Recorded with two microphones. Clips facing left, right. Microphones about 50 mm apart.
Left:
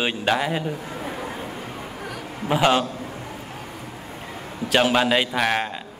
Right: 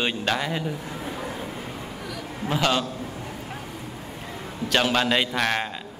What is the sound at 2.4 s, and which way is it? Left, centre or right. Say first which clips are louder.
Speech: left 4 dB; centre.